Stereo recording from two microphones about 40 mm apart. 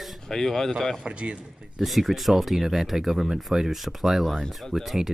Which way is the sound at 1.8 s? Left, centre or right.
Centre.